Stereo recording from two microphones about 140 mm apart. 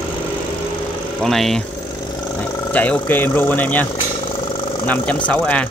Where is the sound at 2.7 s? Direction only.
10° left (ahead or behind).